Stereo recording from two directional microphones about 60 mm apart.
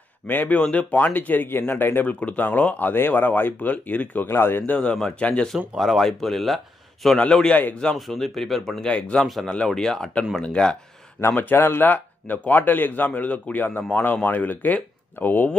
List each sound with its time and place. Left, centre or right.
0.3 s speech: left
0.6 s speech: left
4.7 s speech: centre
5.8 s speech: centre
7.7 s speech: centre
8.1 s speech: centre
8.8 s speech: centre
9.7 s speech: centre
11.1 s speech: left